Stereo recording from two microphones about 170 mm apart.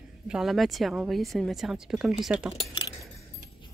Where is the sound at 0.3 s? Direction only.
Centre (ahead or behind).